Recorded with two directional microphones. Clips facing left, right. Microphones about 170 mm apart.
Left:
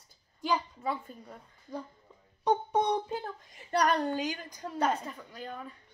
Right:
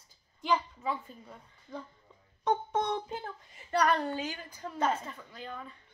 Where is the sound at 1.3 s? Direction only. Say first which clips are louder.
Left 3 dB; 10° left (ahead or behind).